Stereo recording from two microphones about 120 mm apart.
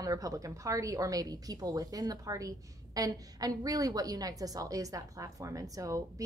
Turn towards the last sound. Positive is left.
turn(degrees=-30)  # may be behind; listen again after turning